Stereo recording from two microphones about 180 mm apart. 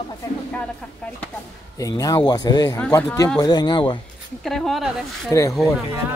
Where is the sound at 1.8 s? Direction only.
20° left (ahead or behind).